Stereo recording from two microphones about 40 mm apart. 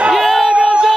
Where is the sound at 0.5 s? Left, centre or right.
Centre.